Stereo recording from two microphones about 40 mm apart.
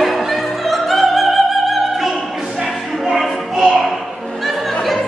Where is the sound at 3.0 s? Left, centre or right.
Centre.